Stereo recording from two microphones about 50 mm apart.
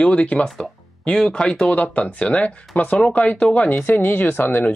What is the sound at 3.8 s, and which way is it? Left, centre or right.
Speech, left.